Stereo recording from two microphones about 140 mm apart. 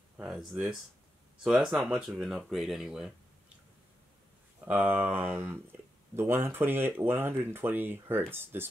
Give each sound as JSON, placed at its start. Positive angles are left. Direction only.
{"t": 0.2, "sound": "speech", "side_deg": 0}
{"t": 4.6, "sound": "speech", "side_deg": -15}